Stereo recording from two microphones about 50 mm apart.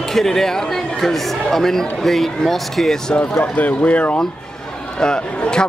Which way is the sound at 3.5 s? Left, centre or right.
Left.